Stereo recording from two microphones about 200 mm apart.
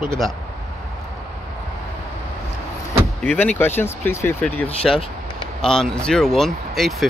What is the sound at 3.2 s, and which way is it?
Speech, 5° left (ahead or behind).